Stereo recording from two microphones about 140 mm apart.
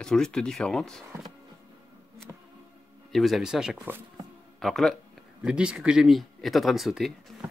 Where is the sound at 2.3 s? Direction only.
20° right (ahead or behind).